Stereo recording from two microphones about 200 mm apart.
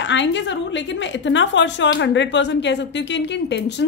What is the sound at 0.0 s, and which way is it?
A woman's voice, 65° left (ahead or behind).